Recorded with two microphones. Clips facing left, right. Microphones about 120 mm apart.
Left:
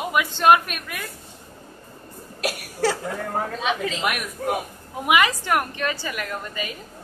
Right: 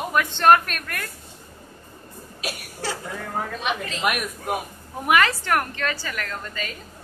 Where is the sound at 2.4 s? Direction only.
75° left (ahead or behind).